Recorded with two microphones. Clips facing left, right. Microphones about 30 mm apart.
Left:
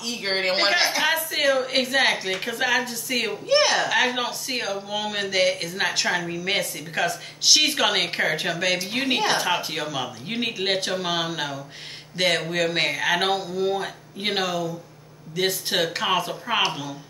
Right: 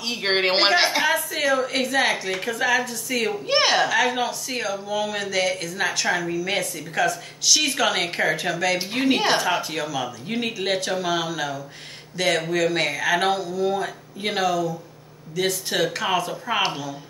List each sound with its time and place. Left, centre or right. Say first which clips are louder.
0.0 s speech: right 3 dB; right
1.0 s speech: even; centre
3.4 s speech: left 2 dB; right
3.9 s a woman's voice: right 1 dB; centre
6.3 s a woman's voice: right 1 dB; left
8.8 s speech: right 3 dB; centre
9.6 s a woman's voice: right 1 dB; centre